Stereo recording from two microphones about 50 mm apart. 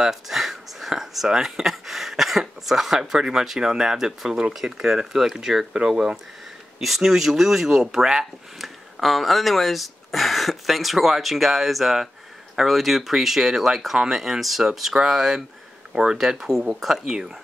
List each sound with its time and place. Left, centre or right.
0.0 s speech: centre
16.2 s speech: centre